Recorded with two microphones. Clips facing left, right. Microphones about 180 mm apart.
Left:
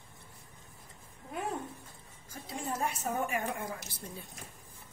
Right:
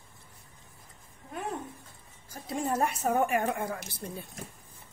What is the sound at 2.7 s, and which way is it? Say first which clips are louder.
A woman's voice: right 6 dB; 60° right (ahead or behind).